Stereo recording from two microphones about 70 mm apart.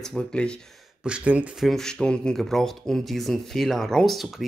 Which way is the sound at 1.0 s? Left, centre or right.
Centre.